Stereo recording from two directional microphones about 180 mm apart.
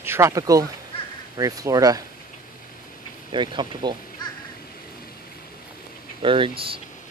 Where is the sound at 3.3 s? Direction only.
25° right (ahead or behind).